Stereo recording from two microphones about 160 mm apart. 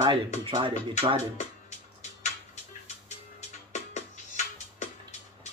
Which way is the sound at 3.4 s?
50° left (ahead or behind).